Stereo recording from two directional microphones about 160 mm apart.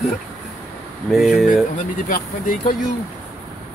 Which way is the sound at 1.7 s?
55° left (ahead or behind).